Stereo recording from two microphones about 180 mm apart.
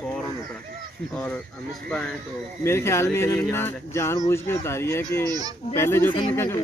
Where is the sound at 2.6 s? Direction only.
15° left (ahead or behind).